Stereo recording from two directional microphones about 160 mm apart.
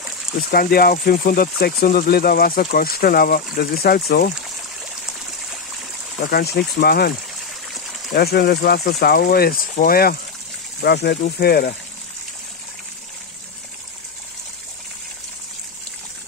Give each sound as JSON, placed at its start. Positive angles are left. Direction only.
{"t": 0.5, "sound": "speech", "side_deg": 70}
{"t": 6.3, "sound": "speech", "side_deg": 80}
{"t": 10.8, "sound": "speech", "side_deg": 90}